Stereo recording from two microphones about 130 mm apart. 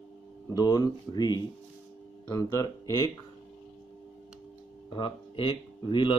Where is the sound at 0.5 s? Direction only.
30° left (ahead or behind).